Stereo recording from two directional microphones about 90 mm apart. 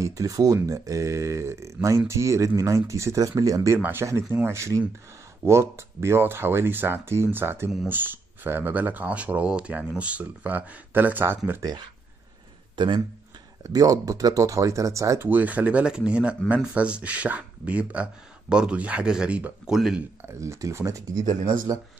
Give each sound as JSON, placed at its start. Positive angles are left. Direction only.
{"t": 0.0, "sound": "speech", "side_deg": -40}
{"t": 3.7, "sound": "speech", "side_deg": -25}
{"t": 12.7, "sound": "speech", "side_deg": -60}
{"t": 13.7, "sound": "speech", "side_deg": -45}
{"t": 15.2, "sound": "speech", "side_deg": -20}
{"t": 20.3, "sound": "speech", "side_deg": -35}